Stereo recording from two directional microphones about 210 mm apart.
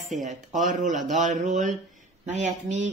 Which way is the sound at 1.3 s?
35° right (ahead or behind).